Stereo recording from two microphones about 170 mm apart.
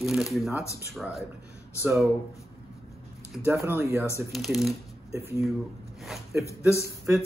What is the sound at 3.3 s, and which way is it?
Speech, 15° right (ahead or behind).